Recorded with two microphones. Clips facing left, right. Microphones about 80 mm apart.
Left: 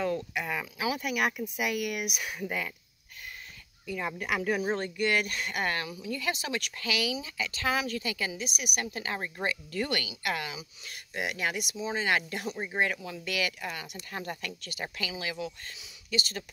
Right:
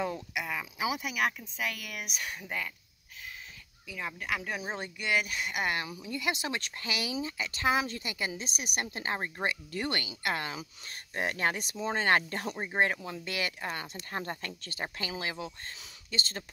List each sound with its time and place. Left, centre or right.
0.0 s a sound: centre
0.4 s a sound: centre
0.7 s speech: centre
1.4 s speech: centre
3.8 s speech: centre
5.8 s a woman's voice: right
11.7 s a woman's voice: right